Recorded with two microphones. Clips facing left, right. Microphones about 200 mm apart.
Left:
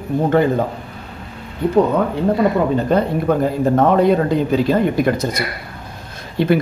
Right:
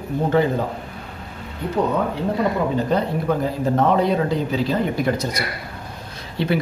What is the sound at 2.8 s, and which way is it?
Speech, 55° left (ahead or behind).